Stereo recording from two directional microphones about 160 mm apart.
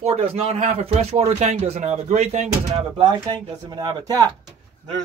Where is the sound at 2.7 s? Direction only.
30° right (ahead or behind).